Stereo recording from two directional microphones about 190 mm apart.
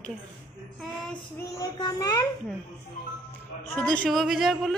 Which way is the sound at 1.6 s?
20° left (ahead or behind).